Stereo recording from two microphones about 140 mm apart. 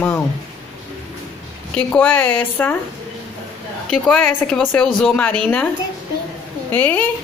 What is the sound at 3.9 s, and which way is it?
A woman's voice, 10° left (ahead or behind).